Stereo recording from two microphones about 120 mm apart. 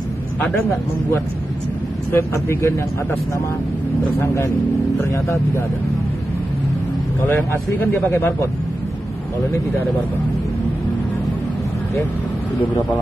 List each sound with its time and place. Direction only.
2.1 s speech: 20° left (ahead or behind)
5.1 s speech: 25° left (ahead or behind)
7.2 s speech: 20° left (ahead or behind)
12.5 s speech: 15° left (ahead or behind)